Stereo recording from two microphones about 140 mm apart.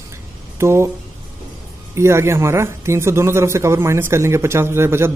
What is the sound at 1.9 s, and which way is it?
A man's voice, 20° right (ahead or behind).